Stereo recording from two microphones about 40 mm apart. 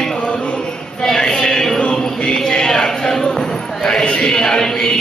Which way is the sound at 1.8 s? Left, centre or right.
Left.